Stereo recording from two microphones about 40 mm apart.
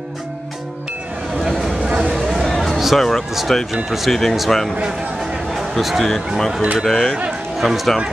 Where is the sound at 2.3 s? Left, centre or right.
Centre.